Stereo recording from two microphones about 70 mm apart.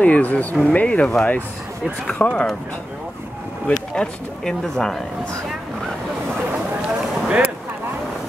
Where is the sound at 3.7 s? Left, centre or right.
Centre.